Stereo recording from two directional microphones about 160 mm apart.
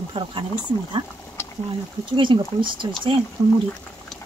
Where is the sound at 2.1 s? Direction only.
30° right (ahead or behind).